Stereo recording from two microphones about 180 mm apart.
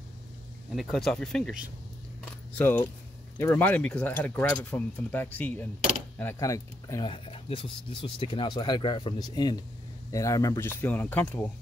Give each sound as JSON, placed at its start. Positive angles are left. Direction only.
{"t": 0.7, "sound": "speech", "side_deg": 0}